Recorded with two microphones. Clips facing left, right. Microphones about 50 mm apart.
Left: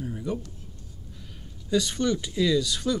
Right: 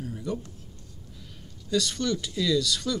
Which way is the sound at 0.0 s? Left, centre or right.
Centre.